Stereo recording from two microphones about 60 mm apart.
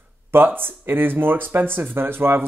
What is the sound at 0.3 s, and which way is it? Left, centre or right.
Speech, right.